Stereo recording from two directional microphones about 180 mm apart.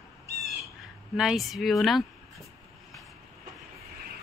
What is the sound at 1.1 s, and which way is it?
Speech, centre (ahead or behind).